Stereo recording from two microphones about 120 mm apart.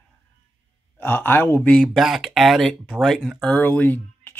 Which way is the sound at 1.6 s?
5° left (ahead or behind).